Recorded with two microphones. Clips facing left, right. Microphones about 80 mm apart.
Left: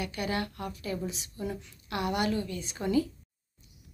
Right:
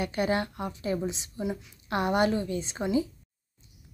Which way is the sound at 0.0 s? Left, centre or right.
Right.